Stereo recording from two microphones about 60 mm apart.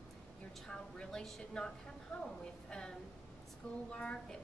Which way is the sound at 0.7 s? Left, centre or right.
Centre.